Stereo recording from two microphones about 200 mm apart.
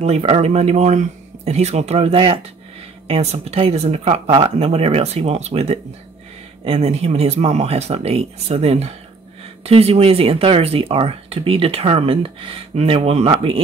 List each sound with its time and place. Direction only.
0.0 s speech: 30° right (ahead or behind)